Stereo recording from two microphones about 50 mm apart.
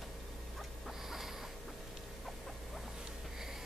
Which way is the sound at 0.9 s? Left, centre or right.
Centre.